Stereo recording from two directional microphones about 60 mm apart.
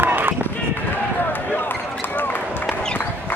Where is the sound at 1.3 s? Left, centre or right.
Left.